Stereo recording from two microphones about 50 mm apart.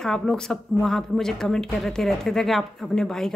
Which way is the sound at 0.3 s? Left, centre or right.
Centre.